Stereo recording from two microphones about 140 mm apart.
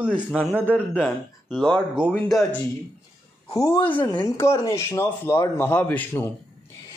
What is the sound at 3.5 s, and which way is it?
A woman's voice, 25° left (ahead or behind).